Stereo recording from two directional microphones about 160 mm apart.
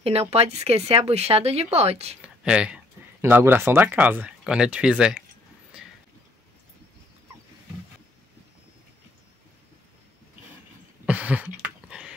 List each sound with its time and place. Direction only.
0.0 s speech: 40° right (ahead or behind)
2.2 s speech: 5° right (ahead or behind)
11.1 s a sound: 10° right (ahead or behind)